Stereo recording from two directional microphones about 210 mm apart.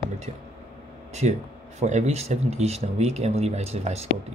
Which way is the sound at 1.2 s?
30° right (ahead or behind).